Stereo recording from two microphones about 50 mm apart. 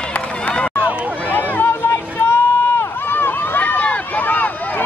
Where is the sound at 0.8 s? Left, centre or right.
Left.